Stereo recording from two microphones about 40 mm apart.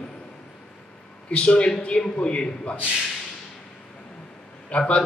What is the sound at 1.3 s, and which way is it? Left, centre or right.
Speech, left.